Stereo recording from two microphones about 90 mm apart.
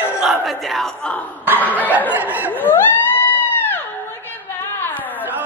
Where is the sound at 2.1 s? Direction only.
20° right (ahead or behind).